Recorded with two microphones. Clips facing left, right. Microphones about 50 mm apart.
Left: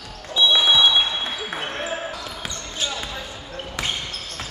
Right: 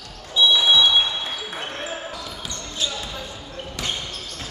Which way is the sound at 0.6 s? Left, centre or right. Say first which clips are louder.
Even; centre.